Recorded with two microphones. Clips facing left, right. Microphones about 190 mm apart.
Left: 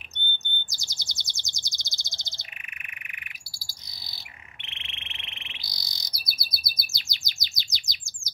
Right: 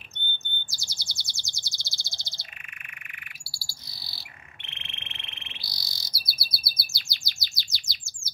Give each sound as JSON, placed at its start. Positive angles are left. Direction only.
{"t": 0.7, "sound": "chirp", "side_deg": 20}
{"t": 3.5, "sound": "bird", "side_deg": 20}